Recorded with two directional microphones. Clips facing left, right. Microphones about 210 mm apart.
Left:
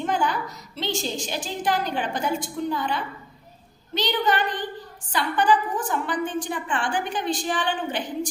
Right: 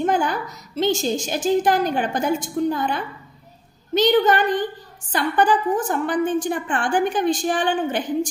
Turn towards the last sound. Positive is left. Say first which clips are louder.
# right 5 dB
turn(degrees=-45)  # may be behind; listen again after turning